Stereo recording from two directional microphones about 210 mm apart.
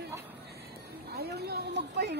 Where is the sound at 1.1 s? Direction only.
50° right (ahead or behind).